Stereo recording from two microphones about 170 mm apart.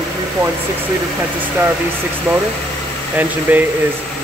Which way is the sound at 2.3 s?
10° right (ahead or behind).